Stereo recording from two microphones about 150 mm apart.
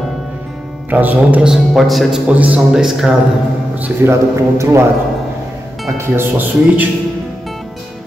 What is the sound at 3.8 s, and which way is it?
A man's voice, 20° right (ahead or behind).